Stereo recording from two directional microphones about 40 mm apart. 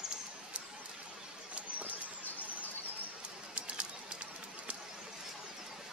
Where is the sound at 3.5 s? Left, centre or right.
Right.